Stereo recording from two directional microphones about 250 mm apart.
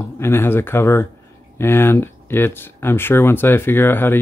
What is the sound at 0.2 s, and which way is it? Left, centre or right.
Speech, centre.